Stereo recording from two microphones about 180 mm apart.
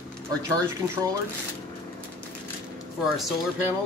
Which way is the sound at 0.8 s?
10° right (ahead or behind).